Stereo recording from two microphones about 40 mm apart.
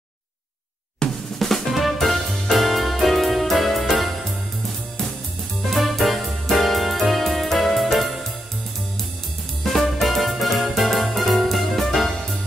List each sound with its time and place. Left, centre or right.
1.0 s drum: centre
1.4 s music: centre
5.6 s music: centre
9.6 s music: centre